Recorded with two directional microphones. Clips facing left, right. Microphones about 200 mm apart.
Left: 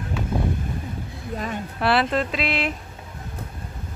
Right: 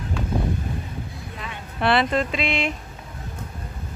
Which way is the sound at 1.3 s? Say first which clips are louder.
Left 11 dB; 40° left (ahead or behind).